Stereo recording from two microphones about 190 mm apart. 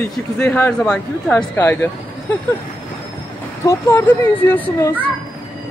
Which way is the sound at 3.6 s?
10° left (ahead or behind).